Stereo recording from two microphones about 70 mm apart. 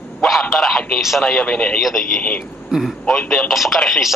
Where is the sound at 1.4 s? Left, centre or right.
Centre.